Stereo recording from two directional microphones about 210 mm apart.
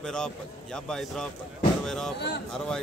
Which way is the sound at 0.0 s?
5° left (ahead or behind).